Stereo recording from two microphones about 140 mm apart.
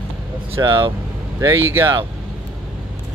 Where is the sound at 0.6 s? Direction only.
35° right (ahead or behind).